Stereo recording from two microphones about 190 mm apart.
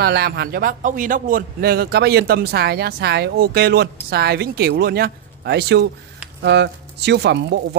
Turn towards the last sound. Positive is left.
turn(degrees=-65)  # may be behind; listen again after turning